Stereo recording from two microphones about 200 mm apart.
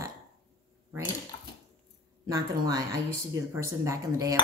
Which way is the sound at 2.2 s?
20° right (ahead or behind).